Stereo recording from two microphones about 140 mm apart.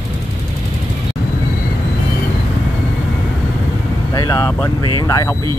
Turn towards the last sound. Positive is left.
turn(degrees=25)  # may be behind; listen again after turning